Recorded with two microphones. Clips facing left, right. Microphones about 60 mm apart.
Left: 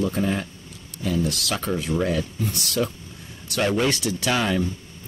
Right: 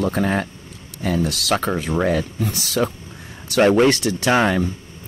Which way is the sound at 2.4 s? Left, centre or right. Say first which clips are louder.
Right 4 dB; right.